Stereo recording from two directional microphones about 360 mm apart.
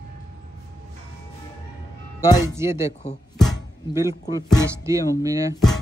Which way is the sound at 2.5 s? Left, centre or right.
Centre.